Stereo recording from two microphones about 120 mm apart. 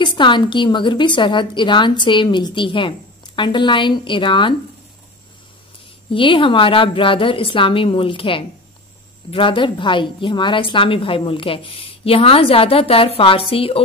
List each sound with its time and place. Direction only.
0.0 s a woman's voice: 40° left (ahead or behind)
6.0 s a woman's voice: 45° left (ahead or behind)